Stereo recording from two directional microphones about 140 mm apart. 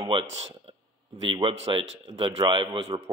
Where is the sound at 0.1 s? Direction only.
35° right (ahead or behind).